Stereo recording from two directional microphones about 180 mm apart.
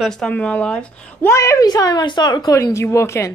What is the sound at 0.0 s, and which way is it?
A woman's voice, 5° left (ahead or behind).